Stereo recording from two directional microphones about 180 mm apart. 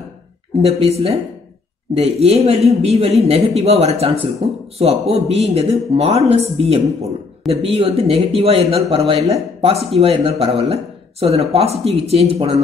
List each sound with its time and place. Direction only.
0.6 s speech: 35° right (ahead or behind)